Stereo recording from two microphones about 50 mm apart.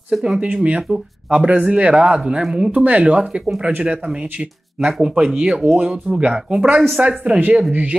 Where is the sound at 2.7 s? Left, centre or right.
Right.